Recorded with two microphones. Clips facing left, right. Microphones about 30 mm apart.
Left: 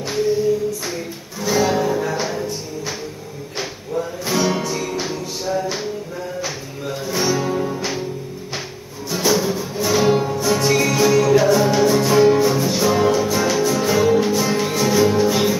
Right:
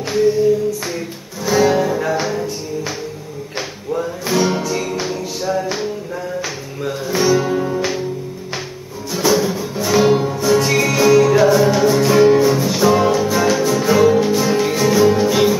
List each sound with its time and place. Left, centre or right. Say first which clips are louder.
1.4 s music: right 3 dB; centre
2.0 s music: right 3 dB; right
4.3 s music: right 3 dB; centre
7.2 s music: right 4 dB; centre
9.1 s music: right 2 dB; centre